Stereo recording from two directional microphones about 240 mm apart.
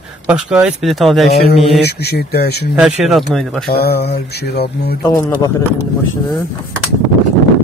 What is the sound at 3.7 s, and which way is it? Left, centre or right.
Mantra, left.